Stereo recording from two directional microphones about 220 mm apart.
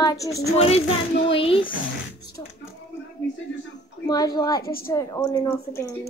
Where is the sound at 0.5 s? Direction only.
30° left (ahead or behind).